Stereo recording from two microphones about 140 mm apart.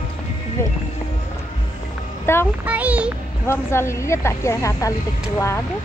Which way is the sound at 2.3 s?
15° left (ahead or behind).